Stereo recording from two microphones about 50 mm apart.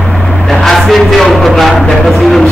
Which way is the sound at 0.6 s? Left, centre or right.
Centre.